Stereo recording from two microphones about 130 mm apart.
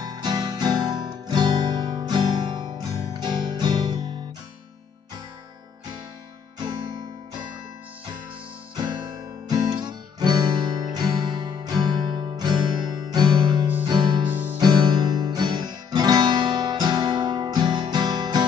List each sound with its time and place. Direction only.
0.0 s guitar: 30° right (ahead or behind)
9.5 s music: 30° right (ahead or behind)
14.3 s music: 15° right (ahead or behind)
14.6 s music: 30° right (ahead or behind)